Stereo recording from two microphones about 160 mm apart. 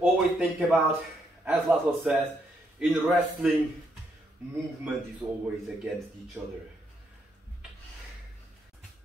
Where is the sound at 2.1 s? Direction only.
10° right (ahead or behind).